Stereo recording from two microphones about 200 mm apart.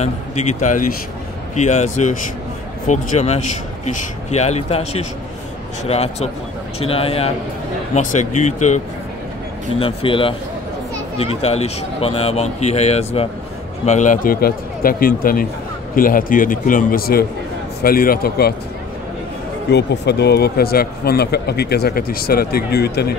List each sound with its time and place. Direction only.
0.6 s a man's voice: 40° left (ahead or behind)
19.7 s speech: 55° left (ahead or behind)